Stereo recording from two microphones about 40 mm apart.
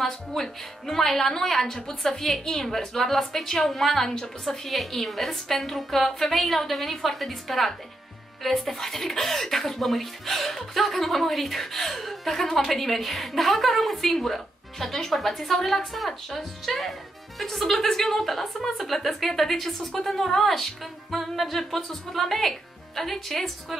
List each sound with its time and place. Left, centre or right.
0.0 s a woman's voice: centre
4.6 s speech: centre